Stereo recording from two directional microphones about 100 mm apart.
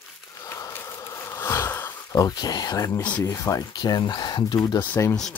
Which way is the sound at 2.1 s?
40° left (ahead or behind).